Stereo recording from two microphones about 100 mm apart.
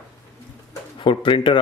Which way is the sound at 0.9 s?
55° left (ahead or behind).